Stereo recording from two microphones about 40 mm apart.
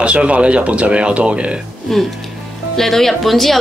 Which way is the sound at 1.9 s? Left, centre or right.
Centre.